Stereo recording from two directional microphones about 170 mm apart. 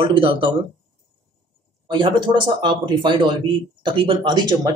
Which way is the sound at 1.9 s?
30° right (ahead or behind).